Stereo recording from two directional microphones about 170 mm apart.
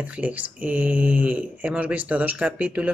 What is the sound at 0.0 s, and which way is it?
Speech, 10° right (ahead or behind).